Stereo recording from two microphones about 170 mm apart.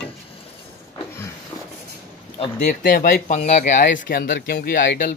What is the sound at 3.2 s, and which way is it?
Speech, 45° left (ahead or behind).